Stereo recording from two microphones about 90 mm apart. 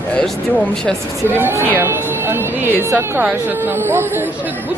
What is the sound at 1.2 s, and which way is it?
Speech, 25° right (ahead or behind).